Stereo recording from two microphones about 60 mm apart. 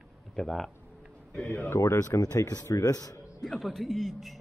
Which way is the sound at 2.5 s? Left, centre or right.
Left.